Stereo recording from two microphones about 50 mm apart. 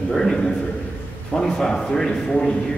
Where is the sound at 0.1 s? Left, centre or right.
Centre.